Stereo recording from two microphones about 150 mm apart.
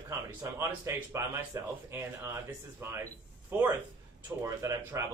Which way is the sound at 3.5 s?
15° right (ahead or behind).